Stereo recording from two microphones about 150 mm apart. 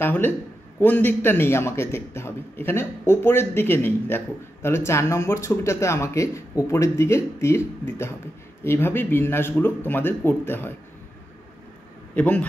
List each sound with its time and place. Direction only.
0.0 s a man's voice: 15° left (ahead or behind)
12.2 s a man's voice: 10° left (ahead or behind)